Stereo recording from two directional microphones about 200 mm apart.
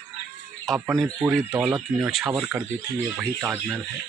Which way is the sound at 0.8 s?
Centre (ahead or behind).